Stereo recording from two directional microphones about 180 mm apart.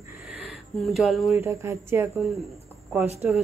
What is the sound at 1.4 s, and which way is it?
Speech, 15° right (ahead or behind).